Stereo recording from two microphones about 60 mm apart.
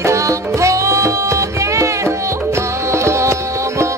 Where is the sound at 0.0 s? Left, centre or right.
Right.